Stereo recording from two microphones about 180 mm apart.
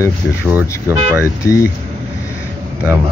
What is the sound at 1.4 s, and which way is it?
Speech, 15° left (ahead or behind).